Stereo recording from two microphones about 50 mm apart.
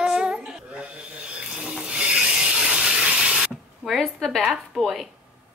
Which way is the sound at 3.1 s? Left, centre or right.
Right.